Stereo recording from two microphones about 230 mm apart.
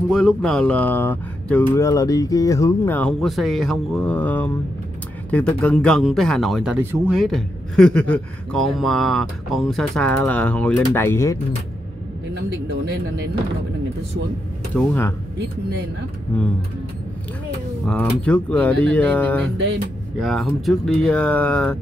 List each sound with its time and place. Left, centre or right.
0.1 s speech: centre
12.4 s speech: right
14.8 s speech: centre
17.8 s speech: centre